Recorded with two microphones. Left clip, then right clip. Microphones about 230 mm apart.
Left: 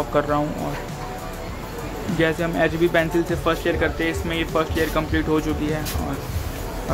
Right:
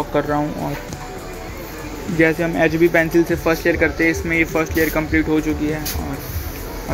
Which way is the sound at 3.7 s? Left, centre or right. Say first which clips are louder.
Right 5 dB; centre.